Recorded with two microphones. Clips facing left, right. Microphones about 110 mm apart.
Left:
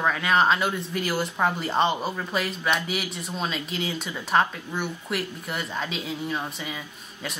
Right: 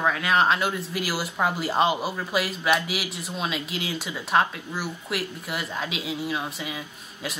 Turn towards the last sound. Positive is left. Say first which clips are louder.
# right 1 dB
turn(degrees=-5)  # may be behind; listen again after turning